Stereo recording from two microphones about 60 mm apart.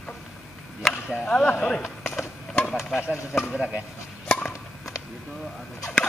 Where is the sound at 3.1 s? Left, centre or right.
Left.